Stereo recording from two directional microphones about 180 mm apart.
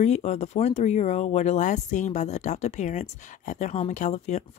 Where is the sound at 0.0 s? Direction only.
40° left (ahead or behind).